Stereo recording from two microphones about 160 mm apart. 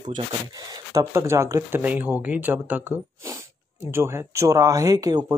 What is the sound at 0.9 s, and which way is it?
Speech, 15° right (ahead or behind).